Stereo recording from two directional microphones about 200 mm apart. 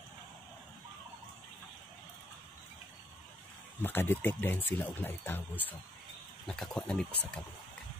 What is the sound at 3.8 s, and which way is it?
Speech, 10° left (ahead or behind).